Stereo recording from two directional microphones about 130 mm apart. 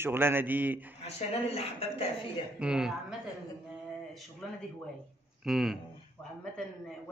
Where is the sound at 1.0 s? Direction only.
50° left (ahead or behind).